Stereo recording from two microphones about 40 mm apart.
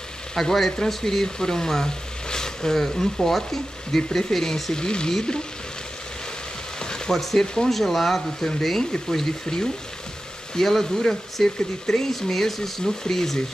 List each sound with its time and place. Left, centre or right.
0.4 s speech: centre
4.7 s speech: left
6.8 s frying: centre
7.2 s speech: centre